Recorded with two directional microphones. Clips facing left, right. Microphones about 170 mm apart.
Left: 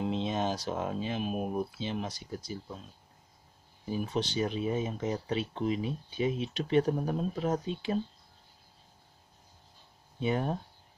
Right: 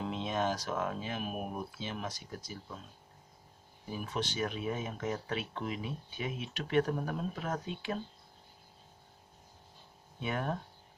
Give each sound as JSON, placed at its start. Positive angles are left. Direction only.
{"t": 0.1, "sound": "speech", "side_deg": 25}
{"t": 3.9, "sound": "speech", "side_deg": 30}
{"t": 10.2, "sound": "speech", "side_deg": 25}